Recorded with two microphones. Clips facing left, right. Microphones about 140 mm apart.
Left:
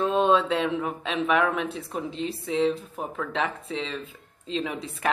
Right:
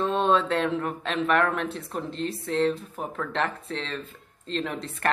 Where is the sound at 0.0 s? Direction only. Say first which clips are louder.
Left 2 dB; centre (ahead or behind).